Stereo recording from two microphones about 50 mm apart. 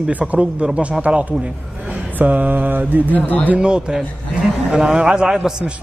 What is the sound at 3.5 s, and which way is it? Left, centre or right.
A man's voice, centre.